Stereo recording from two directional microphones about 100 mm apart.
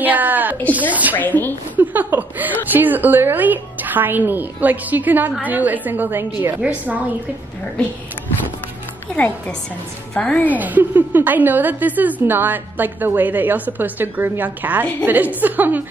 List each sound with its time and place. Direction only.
0.0 s a sound: 15° right (ahead or behind)
0.7 s a woman's voice: 15° right (ahead or behind)
1.1 s a woman's voice: 15° left (ahead or behind)
1.8 s a woman's voice: 20° right (ahead or behind)
10.1 s a woman's voice: 15° left (ahead or behind)
10.5 s a woman's voice: 15° right (ahead or behind)